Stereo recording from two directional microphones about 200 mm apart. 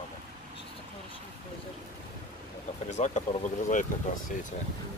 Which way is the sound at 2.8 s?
35° left (ahead or behind).